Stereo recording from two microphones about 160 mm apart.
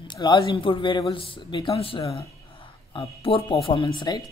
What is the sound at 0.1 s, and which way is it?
Speech, 30° left (ahead or behind).